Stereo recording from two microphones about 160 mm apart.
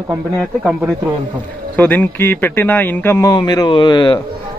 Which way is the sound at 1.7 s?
10° left (ahead or behind).